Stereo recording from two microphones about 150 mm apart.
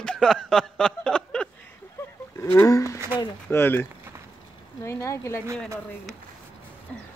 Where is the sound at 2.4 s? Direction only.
15° left (ahead or behind).